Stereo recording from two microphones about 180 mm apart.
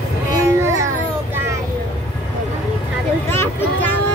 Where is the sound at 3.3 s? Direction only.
15° left (ahead or behind).